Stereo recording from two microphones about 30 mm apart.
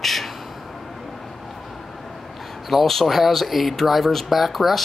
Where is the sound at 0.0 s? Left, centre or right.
Centre.